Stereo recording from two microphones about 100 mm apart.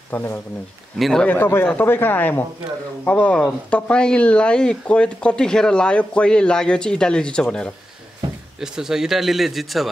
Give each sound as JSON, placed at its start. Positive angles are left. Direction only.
{"t": 0.1, "sound": "speech", "side_deg": 20}
{"t": 0.9, "sound": "speech", "side_deg": 0}
{"t": 1.2, "sound": "speech", "side_deg": 15}
{"t": 8.5, "sound": "speech", "side_deg": -5}